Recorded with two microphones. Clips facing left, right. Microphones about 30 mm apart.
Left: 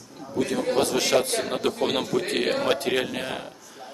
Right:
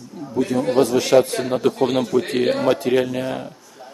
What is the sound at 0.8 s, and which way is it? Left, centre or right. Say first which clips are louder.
Speech: right 5 dB; left.